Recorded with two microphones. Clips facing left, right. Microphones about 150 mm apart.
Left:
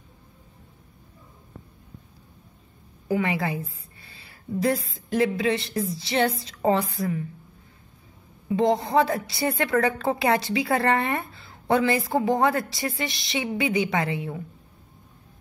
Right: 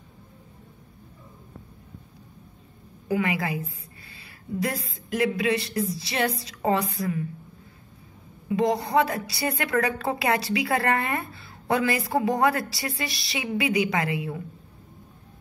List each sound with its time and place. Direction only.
3.1 s a woman's voice: 30° left (ahead or behind)
4.1 s a sound: 30° left (ahead or behind)
4.9 s a woman's voice: 25° left (ahead or behind)
8.5 s a woman's voice: 25° left (ahead or behind)